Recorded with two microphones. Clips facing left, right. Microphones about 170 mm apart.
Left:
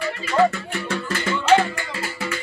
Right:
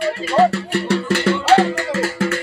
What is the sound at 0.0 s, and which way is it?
Speech, 30° right (ahead or behind).